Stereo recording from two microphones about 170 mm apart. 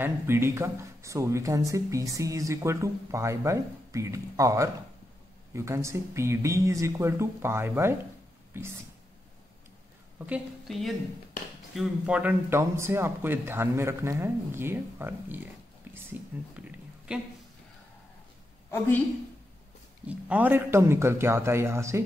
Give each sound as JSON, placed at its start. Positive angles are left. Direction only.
{"t": 0.0, "sound": "speech", "side_deg": -15}
{"t": 10.1, "sound": "a woman's voice", "side_deg": -10}
{"t": 20.1, "sound": "speech", "side_deg": -10}